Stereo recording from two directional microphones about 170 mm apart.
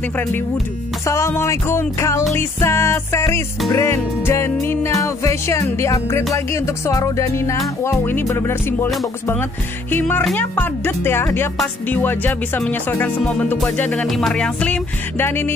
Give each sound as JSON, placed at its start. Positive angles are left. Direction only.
{"t": 1.0, "sound": "music", "side_deg": 15}